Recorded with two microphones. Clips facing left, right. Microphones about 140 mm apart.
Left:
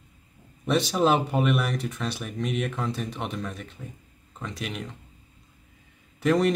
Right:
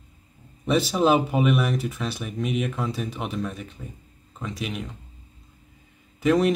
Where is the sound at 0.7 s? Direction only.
Centre (ahead or behind).